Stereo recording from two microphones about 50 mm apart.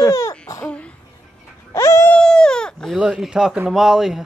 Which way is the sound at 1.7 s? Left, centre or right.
Left.